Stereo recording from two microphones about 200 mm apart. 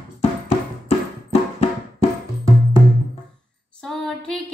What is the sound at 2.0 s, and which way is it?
Music, 30° left (ahead or behind).